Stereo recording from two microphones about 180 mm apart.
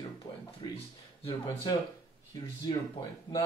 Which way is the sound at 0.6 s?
25° left (ahead or behind).